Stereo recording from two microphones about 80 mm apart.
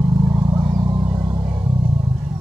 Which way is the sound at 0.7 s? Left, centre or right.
Right.